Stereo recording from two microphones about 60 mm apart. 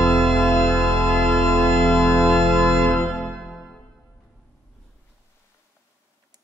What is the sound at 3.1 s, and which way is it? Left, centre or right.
Music, centre.